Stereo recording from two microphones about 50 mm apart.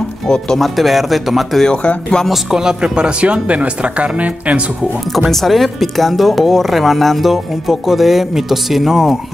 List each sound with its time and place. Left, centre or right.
0.6 s speech: centre
2.5 s speech: centre
5.3 s speech: centre